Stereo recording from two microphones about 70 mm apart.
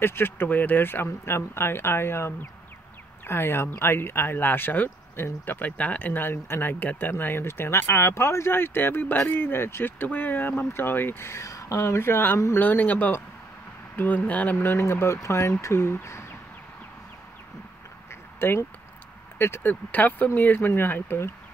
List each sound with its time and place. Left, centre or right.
0.0 s speech: left
14.8 s speech: left
18.4 s speech: left